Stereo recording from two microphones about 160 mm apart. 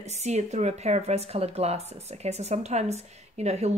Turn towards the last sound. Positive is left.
turn(degrees=-40)  # may be behind; listen again after turning